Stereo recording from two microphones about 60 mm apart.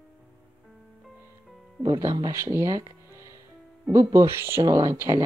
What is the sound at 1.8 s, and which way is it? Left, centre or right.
Speech, right.